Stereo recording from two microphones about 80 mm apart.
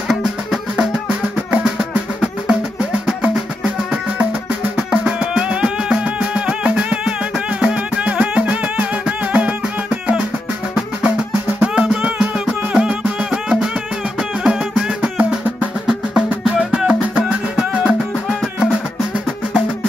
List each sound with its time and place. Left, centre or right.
0.1 s music: centre